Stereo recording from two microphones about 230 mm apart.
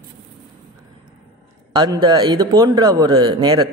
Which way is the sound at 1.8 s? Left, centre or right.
Centre.